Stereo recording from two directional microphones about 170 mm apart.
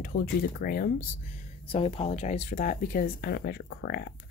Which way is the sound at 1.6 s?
35° left (ahead or behind).